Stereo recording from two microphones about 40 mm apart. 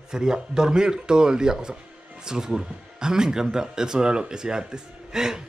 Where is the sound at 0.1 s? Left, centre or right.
Centre.